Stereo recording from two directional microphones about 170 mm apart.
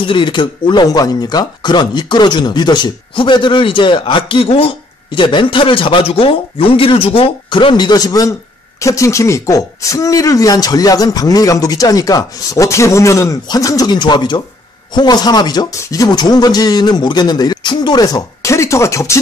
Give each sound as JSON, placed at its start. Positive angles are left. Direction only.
{"t": 0.0, "sound": "speech", "side_deg": 30}